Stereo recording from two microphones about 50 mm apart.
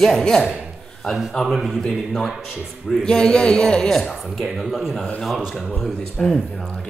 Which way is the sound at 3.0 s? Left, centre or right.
Centre.